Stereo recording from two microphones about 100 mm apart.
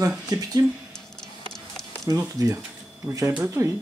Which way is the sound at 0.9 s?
45° left (ahead or behind).